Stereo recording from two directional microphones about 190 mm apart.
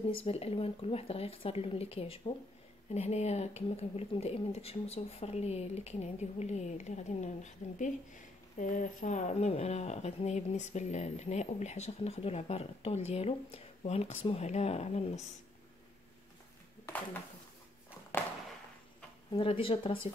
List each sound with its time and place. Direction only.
0.1 s a woman's voice: 30° left (ahead or behind)
16.8 s speech: 10° left (ahead or behind)
18.1 s a sound: 10° left (ahead or behind)
19.3 s speech: 30° left (ahead or behind)